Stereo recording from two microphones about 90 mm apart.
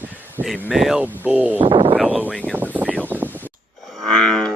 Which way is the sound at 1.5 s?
80° right.